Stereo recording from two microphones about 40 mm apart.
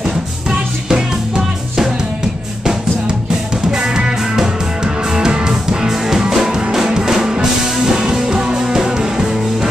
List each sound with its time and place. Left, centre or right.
0.5 s music: centre
3.7 s music: centre